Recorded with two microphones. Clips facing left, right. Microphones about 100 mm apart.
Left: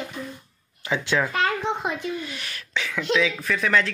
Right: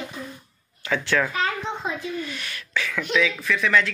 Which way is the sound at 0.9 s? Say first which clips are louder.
Right 1 dB; 15° left (ahead or behind).